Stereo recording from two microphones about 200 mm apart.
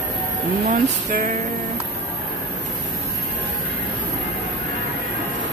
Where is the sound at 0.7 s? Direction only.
40° right (ahead or behind).